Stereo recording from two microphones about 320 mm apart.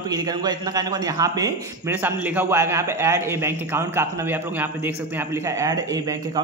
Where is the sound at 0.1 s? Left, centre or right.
Centre.